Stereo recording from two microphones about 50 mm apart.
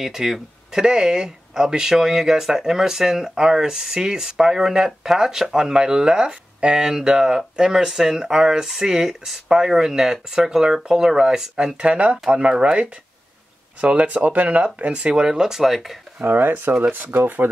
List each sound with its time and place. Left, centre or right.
0.0 s speech: centre
16.3 s speech: right